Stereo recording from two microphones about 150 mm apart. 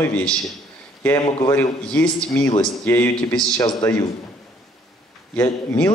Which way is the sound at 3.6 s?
25° left (ahead or behind).